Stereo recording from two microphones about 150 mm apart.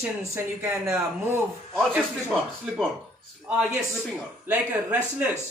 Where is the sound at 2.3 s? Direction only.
Centre (ahead or behind).